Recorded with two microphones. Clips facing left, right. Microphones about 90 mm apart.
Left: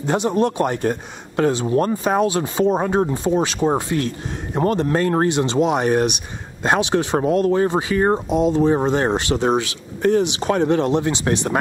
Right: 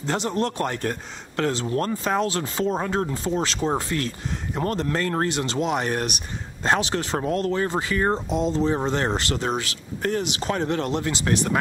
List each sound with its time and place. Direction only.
0.0 s speech: 15° left (ahead or behind)